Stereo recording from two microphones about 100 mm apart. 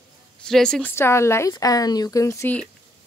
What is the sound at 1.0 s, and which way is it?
Speech, 25° left (ahead or behind).